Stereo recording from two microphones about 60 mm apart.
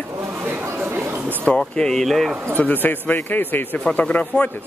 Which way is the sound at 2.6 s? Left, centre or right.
Left.